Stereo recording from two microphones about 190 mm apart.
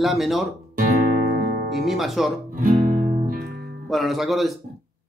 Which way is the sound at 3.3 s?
55° right (ahead or behind).